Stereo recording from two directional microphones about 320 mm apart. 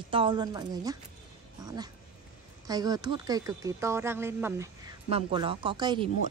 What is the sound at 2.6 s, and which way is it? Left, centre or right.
Speech, centre.